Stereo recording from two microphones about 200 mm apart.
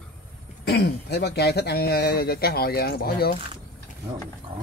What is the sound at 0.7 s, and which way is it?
Speech, 55° left (ahead or behind).